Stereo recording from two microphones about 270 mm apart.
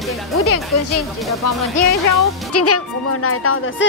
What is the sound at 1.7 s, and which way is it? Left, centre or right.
Speech, left.